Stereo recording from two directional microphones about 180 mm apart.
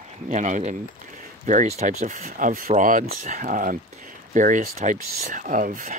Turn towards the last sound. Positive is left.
turn(degrees=-50)  # may be behind; listen again after turning